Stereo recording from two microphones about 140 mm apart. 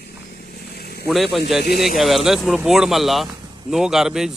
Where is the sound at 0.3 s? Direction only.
90° left.